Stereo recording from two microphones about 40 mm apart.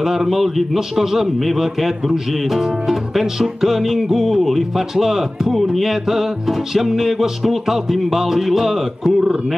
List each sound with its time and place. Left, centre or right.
0.0 s a man's voice: centre